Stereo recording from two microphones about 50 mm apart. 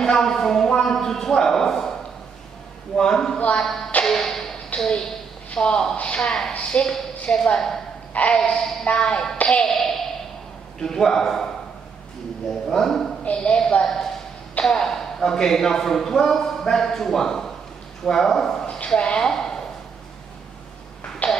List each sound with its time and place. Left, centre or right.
0.0 s speech: centre
0.9 s a sound: centre
3.0 s a man's voice: centre
3.3 s a woman's voice: left
3.6 s speech: centre
4.0 s music: centre
4.7 s a woman's voice: centre
8.4 s a man's voice: centre
13.2 s a woman's voice: left
14.6 s a man's voice: centre
21.2 s music: left